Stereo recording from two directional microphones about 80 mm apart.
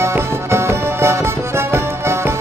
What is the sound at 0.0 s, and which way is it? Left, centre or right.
Music, right.